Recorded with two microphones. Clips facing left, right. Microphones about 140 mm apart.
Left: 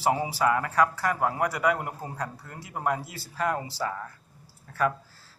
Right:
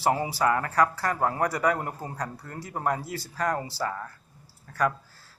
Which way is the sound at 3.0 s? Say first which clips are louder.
Right 6 dB; 40° right (ahead or behind).